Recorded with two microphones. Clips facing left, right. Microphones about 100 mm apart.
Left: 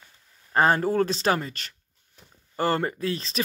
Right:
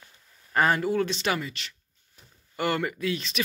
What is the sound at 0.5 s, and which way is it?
Speech, 30° left (ahead or behind).